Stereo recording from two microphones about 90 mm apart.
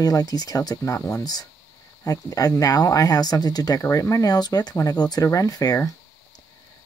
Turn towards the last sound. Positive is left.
turn(degrees=40)  # may be behind; listen again after turning